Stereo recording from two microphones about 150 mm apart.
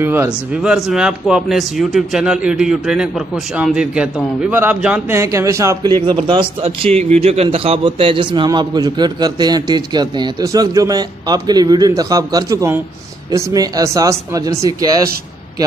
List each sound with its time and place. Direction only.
0.0 s a man's voice: 15° right (ahead or behind)
0.6 s a man's voice: 5° right (ahead or behind); by 15.0 s 20° right (ahead or behind)